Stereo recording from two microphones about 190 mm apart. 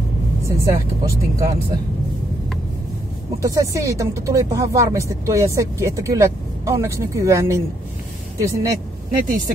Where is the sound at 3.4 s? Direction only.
15° right (ahead or behind).